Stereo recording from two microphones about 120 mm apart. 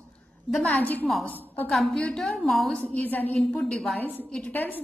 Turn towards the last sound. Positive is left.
turn(degrees=15)  # may be behind; listen again after turning